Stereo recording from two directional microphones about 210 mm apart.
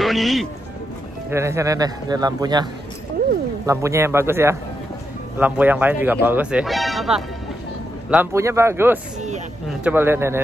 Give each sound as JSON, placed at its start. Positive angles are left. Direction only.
{"t": 0.0, "sound": "speech", "side_deg": 0}
{"t": 1.3, "sound": "speech", "side_deg": -15}